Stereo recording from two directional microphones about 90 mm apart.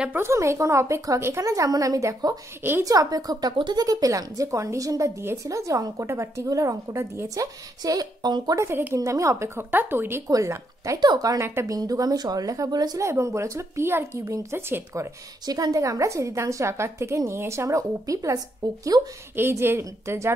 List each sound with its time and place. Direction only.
0.1 s a woman's voice: 30° right (ahead or behind)
2.8 s a woman's voice: 40° right (ahead or behind)
7.8 s a woman's voice: 45° right (ahead or behind)
8.5 s a woman's voice: 25° right (ahead or behind)
8.9 s a woman's voice: 35° right (ahead or behind)
10.2 s a woman's voice: 35° right (ahead or behind)
11.0 s a woman's voice: 45° right (ahead or behind)
11.4 s a woman's voice: 25° right (ahead or behind)
11.7 s a woman's voice: 40° right (ahead or behind)
13.1 s a woman's voice: 35° right (ahead or behind)
15.4 s a woman's voice: 45° right (ahead or behind)
19.3 s a woman's voice: 25° right (ahead or behind)